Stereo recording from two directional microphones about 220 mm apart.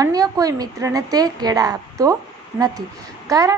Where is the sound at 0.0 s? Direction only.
15° right (ahead or behind).